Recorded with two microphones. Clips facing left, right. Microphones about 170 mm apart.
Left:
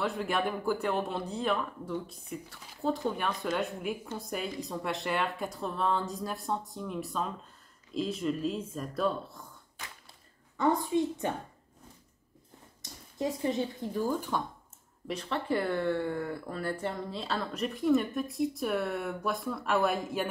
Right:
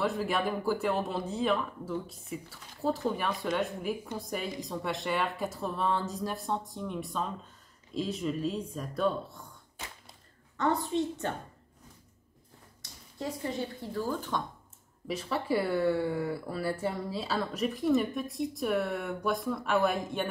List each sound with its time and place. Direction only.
0.0 s speech: centre (ahead or behind)
10.6 s a woman's voice: 10° left (ahead or behind)
13.2 s a woman's voice: 20° left (ahead or behind)
15.0 s speech: 5° right (ahead or behind)